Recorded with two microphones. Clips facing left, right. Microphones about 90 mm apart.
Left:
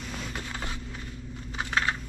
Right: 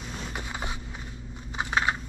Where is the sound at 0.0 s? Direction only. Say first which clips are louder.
Even; 10° right (ahead or behind).